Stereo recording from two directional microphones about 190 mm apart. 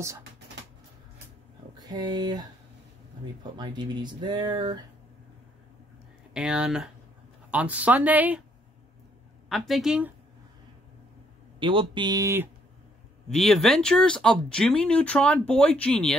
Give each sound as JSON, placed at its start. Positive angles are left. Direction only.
{"t": 1.8, "sound": "speech", "side_deg": -20}
{"t": 3.5, "sound": "speech", "side_deg": -25}
{"t": 6.3, "sound": "speech", "side_deg": -5}
{"t": 9.5, "sound": "speech", "side_deg": 0}
{"t": 11.6, "sound": "speech", "side_deg": -25}
{"t": 13.3, "sound": "speech", "side_deg": 0}